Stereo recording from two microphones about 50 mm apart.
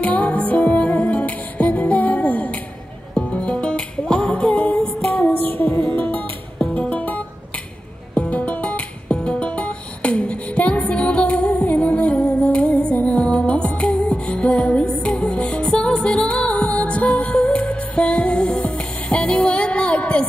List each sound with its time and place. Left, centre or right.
0.0 s music: left
5.1 s music: left